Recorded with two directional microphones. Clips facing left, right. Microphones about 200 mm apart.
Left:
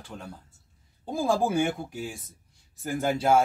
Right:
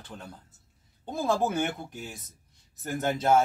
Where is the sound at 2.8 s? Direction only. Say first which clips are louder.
Left 2 dB; 10° left (ahead or behind).